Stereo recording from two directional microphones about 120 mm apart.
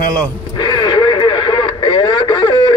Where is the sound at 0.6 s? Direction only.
40° left (ahead or behind).